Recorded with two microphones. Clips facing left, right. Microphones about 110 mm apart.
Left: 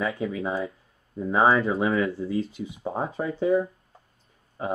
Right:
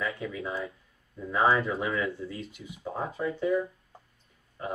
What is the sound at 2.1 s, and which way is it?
Speech, 30° left (ahead or behind).